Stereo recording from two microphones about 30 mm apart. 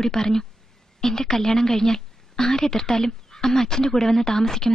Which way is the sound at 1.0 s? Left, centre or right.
Centre.